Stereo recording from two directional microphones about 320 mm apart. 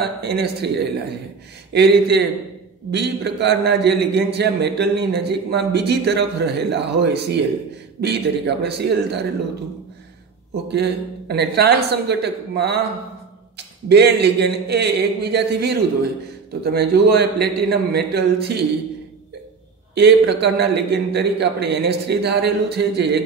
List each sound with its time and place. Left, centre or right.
0.0 s a man's voice: right
10.7 s a man's voice: right
13.8 s a man's voice: right
19.9 s a man's voice: right